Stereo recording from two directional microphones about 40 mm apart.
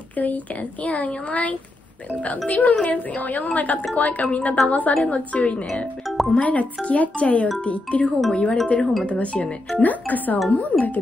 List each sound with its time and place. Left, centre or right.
0.1 s speech: left
6.0 s music: centre
6.3 s speech: left
9.8 s speech: left